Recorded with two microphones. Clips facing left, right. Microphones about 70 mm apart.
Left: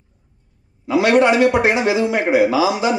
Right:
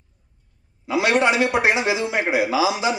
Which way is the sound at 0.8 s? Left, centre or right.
Right.